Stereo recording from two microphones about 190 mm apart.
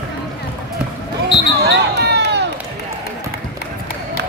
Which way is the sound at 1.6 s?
60° right (ahead or behind).